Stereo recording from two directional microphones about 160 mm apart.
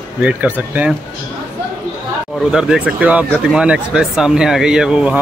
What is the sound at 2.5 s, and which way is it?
Speech, 5° right (ahead or behind).